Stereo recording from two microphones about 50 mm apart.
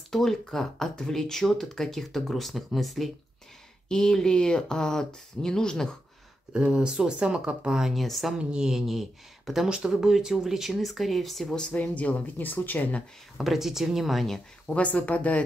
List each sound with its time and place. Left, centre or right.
0.1 s speech: centre
3.9 s speech: centre
6.5 s speech: centre
7.8 s speech: centre
8.4 s speech: centre
11.7 s speech: left
13.4 s speech: centre
14.7 s speech: left